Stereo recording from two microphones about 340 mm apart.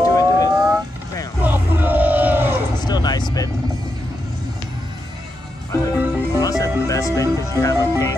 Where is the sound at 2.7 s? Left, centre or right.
Centre.